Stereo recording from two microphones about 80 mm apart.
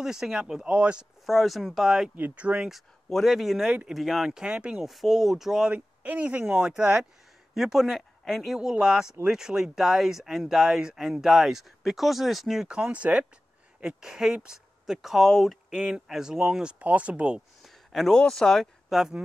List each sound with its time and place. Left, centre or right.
0.0 s speech: centre
1.2 s speech: centre
2.1 s speech: right
2.7 s speech: centre
5.7 s speech: centre
17.6 s speech: centre